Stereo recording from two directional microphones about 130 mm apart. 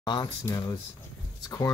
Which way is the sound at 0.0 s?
35° left (ahead or behind).